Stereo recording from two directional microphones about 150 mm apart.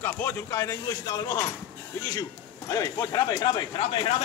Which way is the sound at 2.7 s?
25° left (ahead or behind).